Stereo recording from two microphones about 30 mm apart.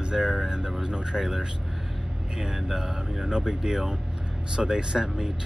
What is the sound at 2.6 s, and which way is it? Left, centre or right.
Mantra, centre.